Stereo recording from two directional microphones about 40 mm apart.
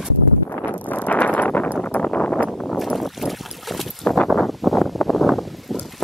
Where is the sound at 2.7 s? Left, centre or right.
Centre.